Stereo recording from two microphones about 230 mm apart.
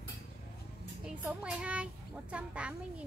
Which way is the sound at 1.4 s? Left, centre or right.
Centre.